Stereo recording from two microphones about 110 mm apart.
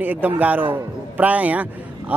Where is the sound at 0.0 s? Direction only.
15° right (ahead or behind).